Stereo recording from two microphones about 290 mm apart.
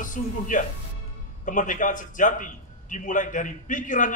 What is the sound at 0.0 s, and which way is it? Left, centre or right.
A man's voice, left.